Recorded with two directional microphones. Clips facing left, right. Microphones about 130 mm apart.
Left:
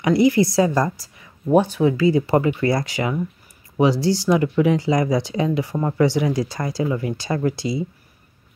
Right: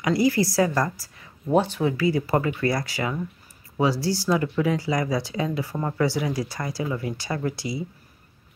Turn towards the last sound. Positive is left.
turn(degrees=25)  # may be behind; listen again after turning